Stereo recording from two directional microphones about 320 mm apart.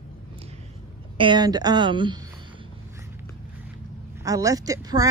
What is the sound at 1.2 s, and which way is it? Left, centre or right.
A woman's voice, centre.